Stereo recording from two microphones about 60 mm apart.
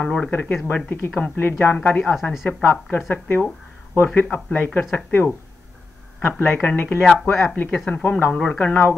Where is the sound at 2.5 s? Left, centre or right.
Left.